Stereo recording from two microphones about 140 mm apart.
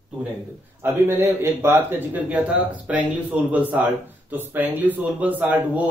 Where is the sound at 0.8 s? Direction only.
15° right (ahead or behind).